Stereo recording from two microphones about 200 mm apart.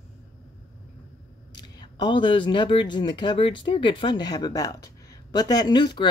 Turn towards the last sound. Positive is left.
turn(degrees=20)  # may be behind; listen again after turning